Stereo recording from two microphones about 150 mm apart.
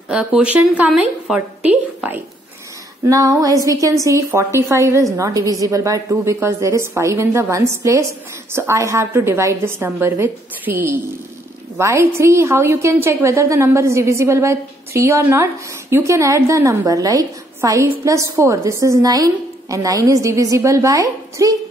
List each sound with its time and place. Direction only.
0.1 s a woman's voice: 5° right (ahead or behind)
3.1 s a woman's voice: 25° right (ahead or behind)